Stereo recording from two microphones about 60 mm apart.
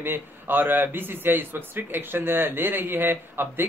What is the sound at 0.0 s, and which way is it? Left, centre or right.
A man's voice, right.